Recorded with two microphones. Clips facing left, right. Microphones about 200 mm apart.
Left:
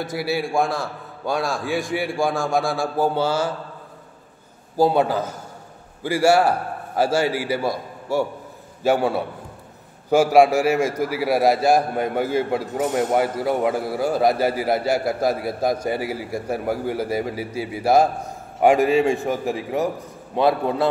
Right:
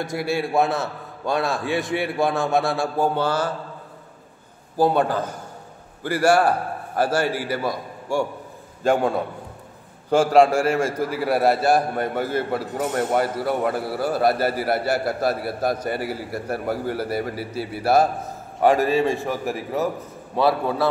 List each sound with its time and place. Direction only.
0.0 s a man's voice: 5° left (ahead or behind)
4.7 s a man's voice: 10° left (ahead or behind)